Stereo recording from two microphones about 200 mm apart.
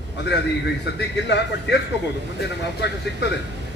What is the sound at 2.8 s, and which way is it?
Speech, 60° left (ahead or behind).